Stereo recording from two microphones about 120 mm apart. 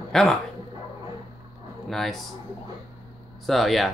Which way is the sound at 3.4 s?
Centre (ahead or behind).